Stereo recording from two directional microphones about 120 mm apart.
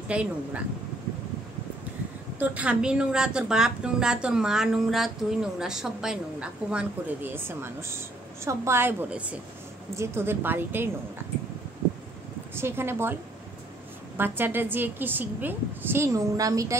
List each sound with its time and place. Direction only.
0.1 s a woman's voice: 10° right (ahead or behind)
2.3 s a woman's voice: 15° right (ahead or behind)
12.5 s a woman's voice: 20° right (ahead or behind)